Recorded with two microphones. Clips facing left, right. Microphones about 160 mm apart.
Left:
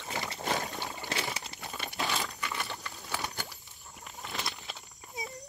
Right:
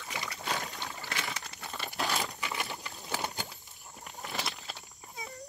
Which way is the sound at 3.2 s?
20° right (ahead or behind).